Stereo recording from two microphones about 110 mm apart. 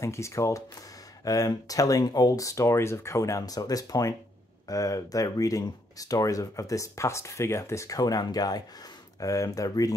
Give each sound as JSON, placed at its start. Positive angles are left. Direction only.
{"t": 0.0, "sound": "speech", "side_deg": 25}